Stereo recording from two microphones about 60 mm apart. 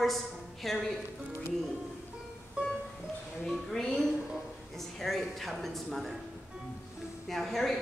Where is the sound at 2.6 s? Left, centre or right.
Centre.